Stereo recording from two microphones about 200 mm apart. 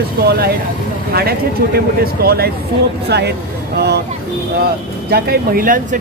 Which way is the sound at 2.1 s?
50° right (ahead or behind).